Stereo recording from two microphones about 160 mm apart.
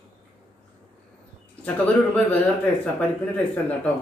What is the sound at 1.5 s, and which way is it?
Speech, 10° left (ahead or behind).